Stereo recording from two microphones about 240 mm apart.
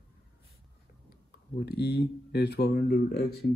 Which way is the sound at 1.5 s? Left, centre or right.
Left.